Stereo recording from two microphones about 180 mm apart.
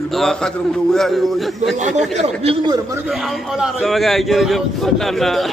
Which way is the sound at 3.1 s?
Centre (ahead or behind).